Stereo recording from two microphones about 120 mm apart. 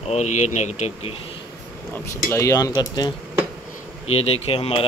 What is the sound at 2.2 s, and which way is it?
Speech, 25° left (ahead or behind).